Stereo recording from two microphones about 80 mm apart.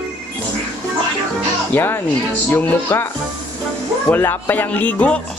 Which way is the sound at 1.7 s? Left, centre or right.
Left.